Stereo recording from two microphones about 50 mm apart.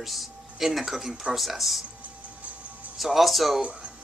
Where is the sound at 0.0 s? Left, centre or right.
Centre.